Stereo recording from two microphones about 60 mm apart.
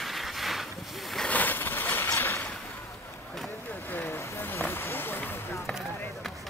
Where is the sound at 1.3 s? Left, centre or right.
Left.